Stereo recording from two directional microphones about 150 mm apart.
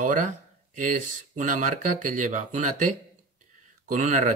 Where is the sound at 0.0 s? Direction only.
60° right (ahead or behind).